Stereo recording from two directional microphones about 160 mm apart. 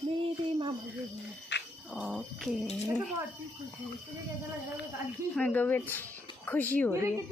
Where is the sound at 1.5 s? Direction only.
90° left.